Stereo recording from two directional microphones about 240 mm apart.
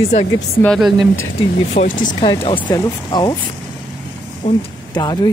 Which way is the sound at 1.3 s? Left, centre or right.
Left.